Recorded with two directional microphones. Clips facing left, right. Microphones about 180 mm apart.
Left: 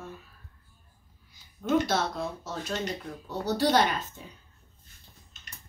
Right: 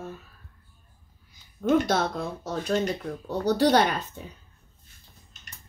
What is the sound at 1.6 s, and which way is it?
Speech, 50° right (ahead or behind).